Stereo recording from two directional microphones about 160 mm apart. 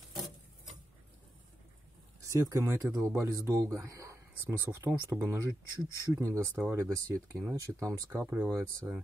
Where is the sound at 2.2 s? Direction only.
20° right (ahead or behind).